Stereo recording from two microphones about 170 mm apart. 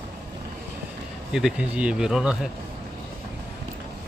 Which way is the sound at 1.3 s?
5° right (ahead or behind).